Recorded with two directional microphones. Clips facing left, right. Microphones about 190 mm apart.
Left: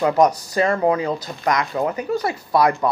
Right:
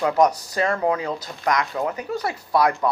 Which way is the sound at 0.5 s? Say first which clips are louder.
Left 4 dB; 10° left (ahead or behind).